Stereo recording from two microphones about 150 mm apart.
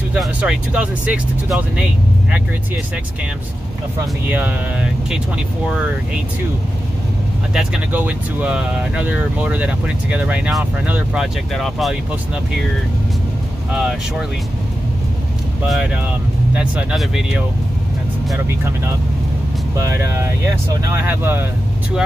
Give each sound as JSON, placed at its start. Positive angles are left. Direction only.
{"t": 0.1, "sound": "speech", "side_deg": -5}
{"t": 4.3, "sound": "speech", "side_deg": -10}
{"t": 7.5, "sound": "speech", "side_deg": -5}
{"t": 13.7, "sound": "speech", "side_deg": -5}
{"t": 16.5, "sound": "speech", "side_deg": -5}
{"t": 19.8, "sound": "speech", "side_deg": -20}